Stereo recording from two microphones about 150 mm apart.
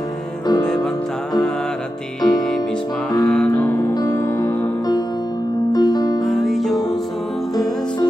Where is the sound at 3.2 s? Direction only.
5° left (ahead or behind).